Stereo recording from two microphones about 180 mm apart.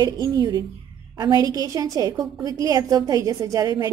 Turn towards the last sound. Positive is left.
turn(degrees=-20)  # may be behind; listen again after turning